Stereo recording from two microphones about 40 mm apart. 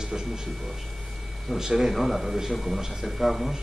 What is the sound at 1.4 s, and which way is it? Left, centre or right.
A man's voice, centre.